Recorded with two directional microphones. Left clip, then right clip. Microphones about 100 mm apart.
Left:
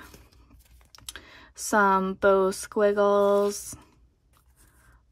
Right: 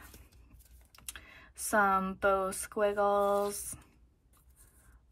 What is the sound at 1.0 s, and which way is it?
Speech, 25° left (ahead or behind).